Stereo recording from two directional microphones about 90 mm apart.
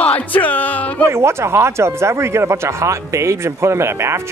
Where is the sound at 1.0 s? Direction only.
30° right (ahead or behind).